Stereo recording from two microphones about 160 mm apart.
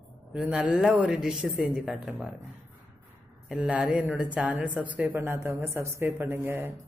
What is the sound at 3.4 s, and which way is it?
A man's voice, 5° right (ahead or behind).